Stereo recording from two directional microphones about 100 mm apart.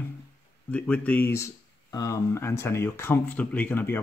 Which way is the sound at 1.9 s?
35° left (ahead or behind).